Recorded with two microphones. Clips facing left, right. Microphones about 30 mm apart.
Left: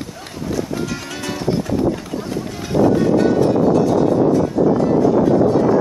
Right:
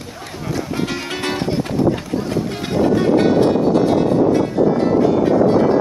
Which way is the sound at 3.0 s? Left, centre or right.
Right.